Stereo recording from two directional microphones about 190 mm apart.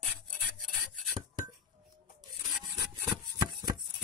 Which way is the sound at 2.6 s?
20° right (ahead or behind).